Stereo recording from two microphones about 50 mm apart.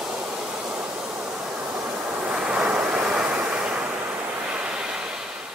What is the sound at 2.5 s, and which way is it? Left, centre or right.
Vehicle, centre.